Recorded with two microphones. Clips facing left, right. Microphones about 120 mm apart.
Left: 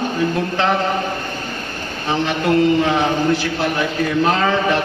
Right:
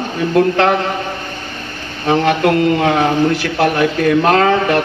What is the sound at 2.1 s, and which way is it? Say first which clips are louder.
A man's voice: right 5 dB; 60° right (ahead or behind).